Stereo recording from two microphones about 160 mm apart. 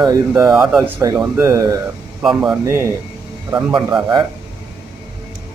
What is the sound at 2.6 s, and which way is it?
Speech, 15° right (ahead or behind).